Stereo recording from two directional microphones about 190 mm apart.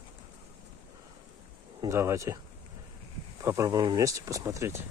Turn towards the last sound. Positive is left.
turn(degrees=-15)  # may be behind; listen again after turning